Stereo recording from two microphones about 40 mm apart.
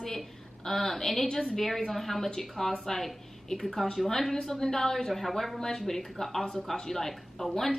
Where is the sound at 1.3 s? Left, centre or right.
Centre.